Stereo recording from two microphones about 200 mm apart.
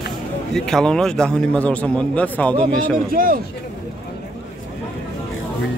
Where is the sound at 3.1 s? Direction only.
45° right (ahead or behind).